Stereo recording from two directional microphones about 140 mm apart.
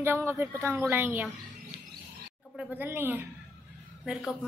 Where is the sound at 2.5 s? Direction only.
15° right (ahead or behind).